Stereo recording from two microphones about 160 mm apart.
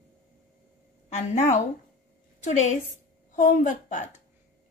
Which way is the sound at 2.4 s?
50° left (ahead or behind).